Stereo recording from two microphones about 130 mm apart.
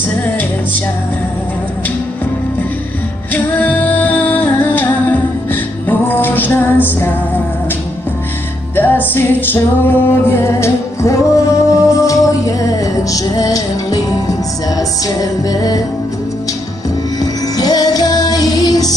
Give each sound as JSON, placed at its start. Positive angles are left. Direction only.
{"t": 3.6, "sound": "music", "side_deg": 15}
{"t": 8.7, "sound": "music", "side_deg": 15}
{"t": 17.2, "sound": "music", "side_deg": 30}